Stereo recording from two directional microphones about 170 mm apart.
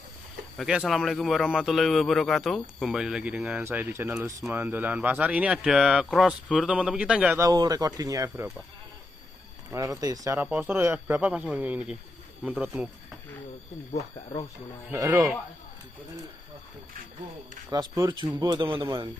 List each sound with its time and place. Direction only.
0.6 s speech: 5° right (ahead or behind)
7.3 s speech: 20° right (ahead or behind)
9.7 s speech: 20° right (ahead or behind)
10.4 s speech: 10° right (ahead or behind)
14.9 s speech: 10° right (ahead or behind)
17.6 s speech: 25° right (ahead or behind)